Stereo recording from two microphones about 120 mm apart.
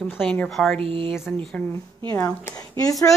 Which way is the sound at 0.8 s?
50° right (ahead or behind).